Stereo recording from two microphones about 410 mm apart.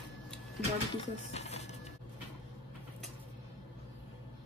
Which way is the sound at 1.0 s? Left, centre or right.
Centre.